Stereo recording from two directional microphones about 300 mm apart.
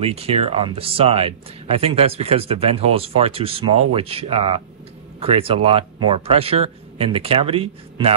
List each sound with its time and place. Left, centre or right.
0.0 s speech: centre